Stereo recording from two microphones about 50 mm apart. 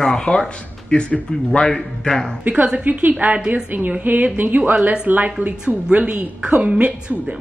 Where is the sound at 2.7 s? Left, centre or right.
Right.